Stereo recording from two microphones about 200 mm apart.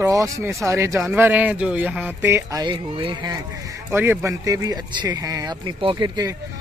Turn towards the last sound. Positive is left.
turn(degrees=-20)  # may be behind; listen again after turning